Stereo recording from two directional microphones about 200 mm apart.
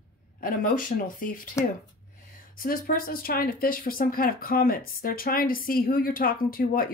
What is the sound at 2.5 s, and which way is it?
Speech, 45° left (ahead or behind).